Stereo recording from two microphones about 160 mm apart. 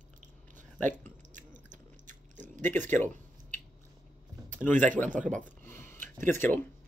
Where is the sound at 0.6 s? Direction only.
50° right (ahead or behind).